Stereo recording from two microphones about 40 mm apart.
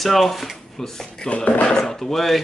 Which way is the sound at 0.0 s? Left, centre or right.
Centre.